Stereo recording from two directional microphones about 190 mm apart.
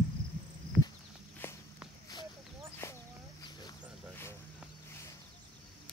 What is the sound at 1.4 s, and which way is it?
Walk, 10° left (ahead or behind).